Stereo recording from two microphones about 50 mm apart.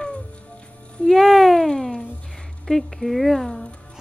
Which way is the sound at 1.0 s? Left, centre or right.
Centre.